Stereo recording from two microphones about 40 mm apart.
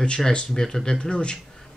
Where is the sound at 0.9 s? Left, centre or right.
Left.